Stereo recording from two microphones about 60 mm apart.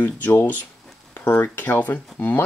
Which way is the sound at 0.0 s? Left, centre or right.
Left.